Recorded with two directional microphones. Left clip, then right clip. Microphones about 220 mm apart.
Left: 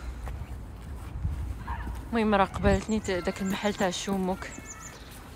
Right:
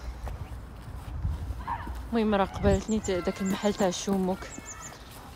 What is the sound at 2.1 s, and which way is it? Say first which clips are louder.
Speech: left 2 dB; 15° right (ahead or behind).